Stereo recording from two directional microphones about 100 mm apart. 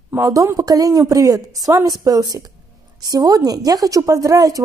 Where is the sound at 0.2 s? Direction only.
35° right (ahead or behind).